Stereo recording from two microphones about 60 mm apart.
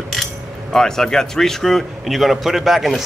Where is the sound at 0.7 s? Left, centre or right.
Centre.